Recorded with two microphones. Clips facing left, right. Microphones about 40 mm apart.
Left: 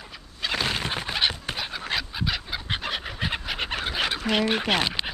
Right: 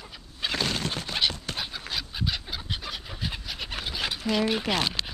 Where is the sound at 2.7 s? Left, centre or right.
Left.